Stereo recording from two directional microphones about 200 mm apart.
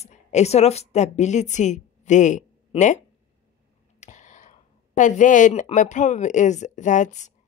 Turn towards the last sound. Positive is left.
turn(degrees=35)  # may be behind; listen again after turning